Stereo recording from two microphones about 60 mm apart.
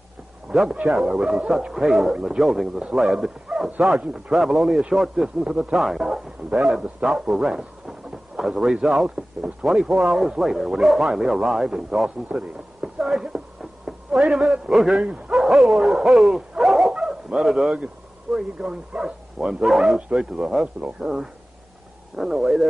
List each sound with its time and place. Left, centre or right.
0.5 s a sound: centre
0.8 s a man's voice: centre
3.5 s bow-wow: centre
4.3 s a man's voice: centre
12.3 s a sound: centre
15.0 s a man's voice: centre
15.3 s dog: centre
18.3 s a man's voice: centre
19.6 s a man's voice: centre